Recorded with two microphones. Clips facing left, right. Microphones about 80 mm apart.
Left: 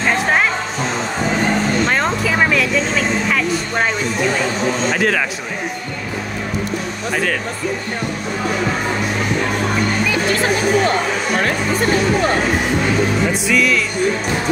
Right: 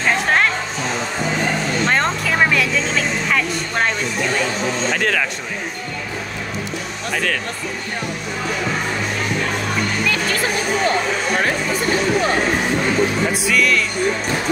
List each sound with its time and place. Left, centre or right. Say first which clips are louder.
1.9 s vehicle: left 1 dB; centre
3.3 s speech: left 2 dB; centre
4.9 s speech: left 1 dB; centre
13.5 s speech: left 1 dB; centre